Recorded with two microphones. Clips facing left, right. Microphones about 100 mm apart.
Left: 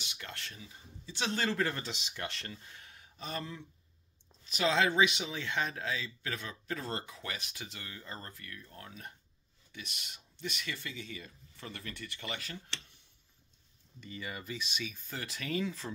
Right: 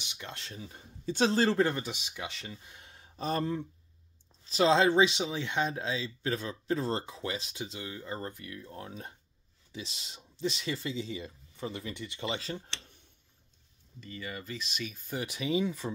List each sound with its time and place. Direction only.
0.0 s speech: 20° right (ahead or behind)
0.6 s speech: 50° right (ahead or behind)
1.3 s speech: 30° right (ahead or behind)
1.8 s speech: 10° right (ahead or behind); by 3.6 s 45° right (ahead or behind)
4.5 s speech: 30° right (ahead or behind)
13.9 s speech: 10° left (ahead or behind)
15.3 s speech: 15° right (ahead or behind)